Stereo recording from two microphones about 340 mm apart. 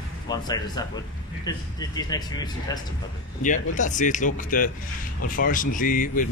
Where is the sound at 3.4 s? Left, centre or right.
Left.